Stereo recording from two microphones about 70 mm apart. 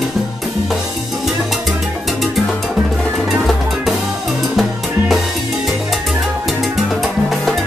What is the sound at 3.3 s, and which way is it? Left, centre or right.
Music, centre.